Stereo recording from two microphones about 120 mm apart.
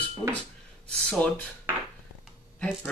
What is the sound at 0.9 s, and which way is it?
Speech, 10° left (ahead or behind).